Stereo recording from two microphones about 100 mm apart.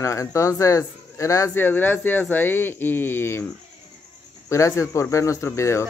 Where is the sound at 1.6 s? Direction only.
20° left (ahead or behind).